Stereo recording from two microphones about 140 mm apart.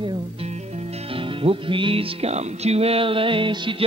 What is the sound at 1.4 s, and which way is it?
Music, 40° right (ahead or behind).